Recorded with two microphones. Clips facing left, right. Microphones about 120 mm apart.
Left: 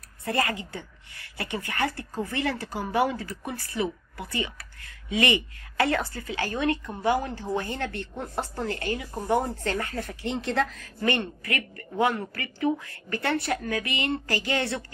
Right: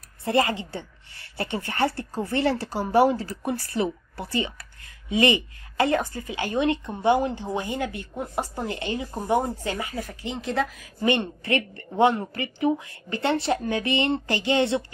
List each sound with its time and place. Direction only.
0.2 s a woman's voice: 25° right (ahead or behind); by 10.9 s 5° right (ahead or behind)
11.0 s a woman's voice: 20° right (ahead or behind)